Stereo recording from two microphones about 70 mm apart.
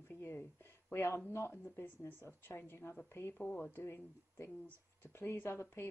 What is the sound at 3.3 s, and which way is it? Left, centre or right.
A woman's voice, left.